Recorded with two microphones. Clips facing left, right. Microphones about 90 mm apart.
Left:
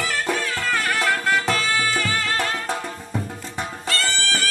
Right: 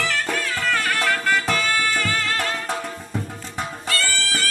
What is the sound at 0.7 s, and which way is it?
Music, centre (ahead or behind).